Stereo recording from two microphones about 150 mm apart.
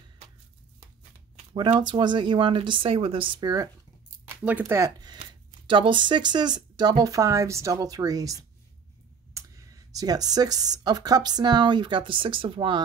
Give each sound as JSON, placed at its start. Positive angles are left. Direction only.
{"t": 1.5, "sound": "speech", "side_deg": -30}
{"t": 4.4, "sound": "speech", "side_deg": -10}
{"t": 9.9, "sound": "speech", "side_deg": -25}